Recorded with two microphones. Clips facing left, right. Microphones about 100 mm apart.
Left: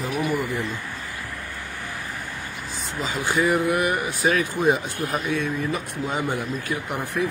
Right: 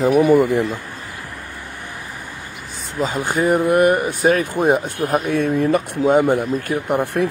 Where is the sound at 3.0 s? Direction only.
45° right (ahead or behind).